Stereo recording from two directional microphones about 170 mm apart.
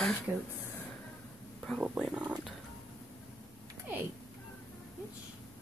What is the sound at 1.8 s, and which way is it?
Speech, 5° right (ahead or behind).